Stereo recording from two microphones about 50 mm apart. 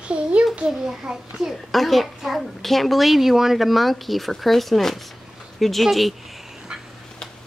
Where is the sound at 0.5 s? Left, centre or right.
Centre.